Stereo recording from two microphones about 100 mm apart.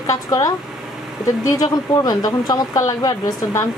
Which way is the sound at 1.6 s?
40° left (ahead or behind).